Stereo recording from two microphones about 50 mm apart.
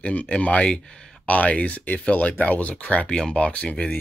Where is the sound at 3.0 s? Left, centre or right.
Centre.